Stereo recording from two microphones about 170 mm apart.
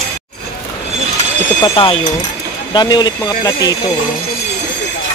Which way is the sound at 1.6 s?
30° left (ahead or behind).